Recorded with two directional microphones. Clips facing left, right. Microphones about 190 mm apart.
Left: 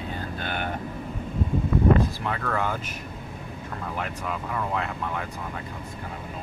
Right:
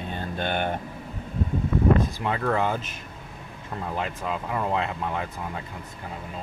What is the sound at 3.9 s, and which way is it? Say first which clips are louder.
Speech: right 2 dB; 25° right (ahead or behind).